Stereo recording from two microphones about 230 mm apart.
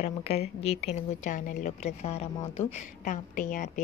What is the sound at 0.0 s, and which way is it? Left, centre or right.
A woman's voice, left.